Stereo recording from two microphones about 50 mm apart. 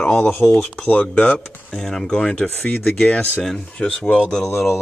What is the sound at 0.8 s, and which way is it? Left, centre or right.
Speech, left.